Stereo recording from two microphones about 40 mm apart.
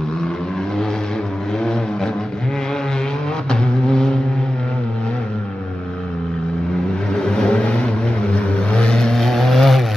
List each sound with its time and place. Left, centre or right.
1.6 s vehicle: centre
3.4 s vehicle: centre
7.2 s vehicle: left
9.1 s vehicle: centre